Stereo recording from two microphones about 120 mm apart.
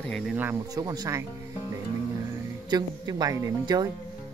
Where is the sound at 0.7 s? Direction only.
30° right (ahead or behind).